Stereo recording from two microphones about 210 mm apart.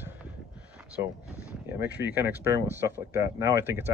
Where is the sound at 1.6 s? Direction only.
10° right (ahead or behind).